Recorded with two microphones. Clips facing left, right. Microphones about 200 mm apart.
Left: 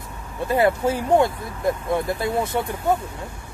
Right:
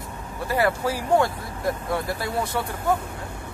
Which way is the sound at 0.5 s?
25° left (ahead or behind).